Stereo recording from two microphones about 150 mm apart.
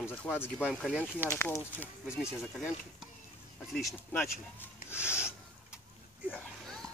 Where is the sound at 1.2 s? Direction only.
15° left (ahead or behind).